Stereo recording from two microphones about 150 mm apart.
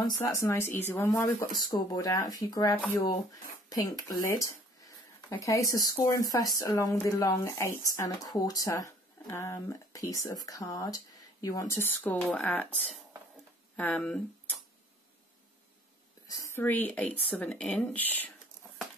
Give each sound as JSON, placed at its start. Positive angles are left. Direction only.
{"t": 0.2, "sound": "speech", "side_deg": 20}
{"t": 16.3, "sound": "a woman's voice", "side_deg": 20}